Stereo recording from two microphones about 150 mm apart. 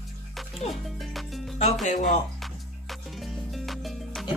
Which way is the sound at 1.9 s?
50° left (ahead or behind).